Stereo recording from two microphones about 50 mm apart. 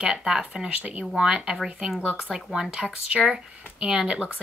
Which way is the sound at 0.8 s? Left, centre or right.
Right.